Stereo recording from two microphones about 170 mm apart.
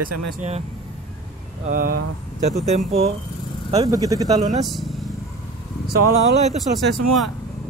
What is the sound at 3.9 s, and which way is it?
Speech, 20° right (ahead or behind).